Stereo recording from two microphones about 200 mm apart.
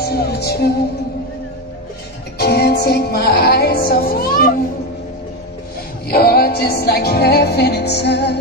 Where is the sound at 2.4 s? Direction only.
55° left (ahead or behind).